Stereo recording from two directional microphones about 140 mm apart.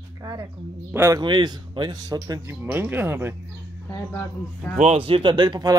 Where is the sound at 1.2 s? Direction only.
30° right (ahead or behind).